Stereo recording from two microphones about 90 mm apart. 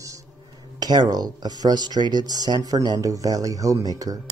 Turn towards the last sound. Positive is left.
turn(degrees=-45)  # may be behind; listen again after turning